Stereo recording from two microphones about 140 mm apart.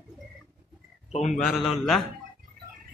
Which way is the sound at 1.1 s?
55° left (ahead or behind).